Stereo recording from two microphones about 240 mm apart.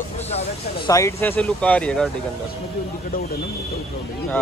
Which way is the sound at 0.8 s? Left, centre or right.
Centre.